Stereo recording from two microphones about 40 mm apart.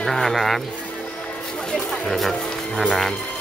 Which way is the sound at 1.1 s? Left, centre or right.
Left.